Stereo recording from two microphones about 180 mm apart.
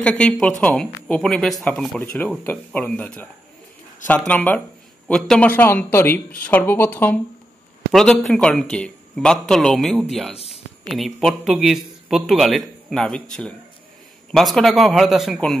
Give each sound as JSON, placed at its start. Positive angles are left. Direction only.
{"t": 0.0, "sound": "a man's voice", "side_deg": 5}
{"t": 10.3, "sound": "a sound", "side_deg": 35}
{"t": 10.9, "sound": "speech", "side_deg": 0}